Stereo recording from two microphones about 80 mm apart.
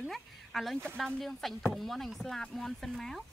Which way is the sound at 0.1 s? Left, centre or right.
Centre.